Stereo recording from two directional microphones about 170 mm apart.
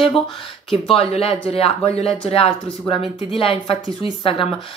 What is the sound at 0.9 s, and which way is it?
Speech, 35° left (ahead or behind).